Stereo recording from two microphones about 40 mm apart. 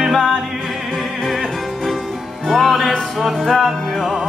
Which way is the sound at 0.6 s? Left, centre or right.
Centre.